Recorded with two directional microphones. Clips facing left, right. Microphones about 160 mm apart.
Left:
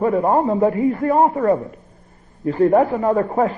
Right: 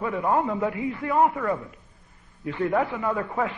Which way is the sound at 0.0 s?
40° left (ahead or behind).